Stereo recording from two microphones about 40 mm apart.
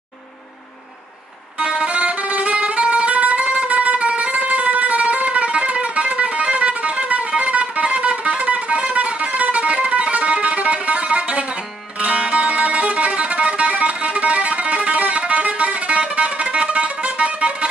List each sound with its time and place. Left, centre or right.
1.6 s music: right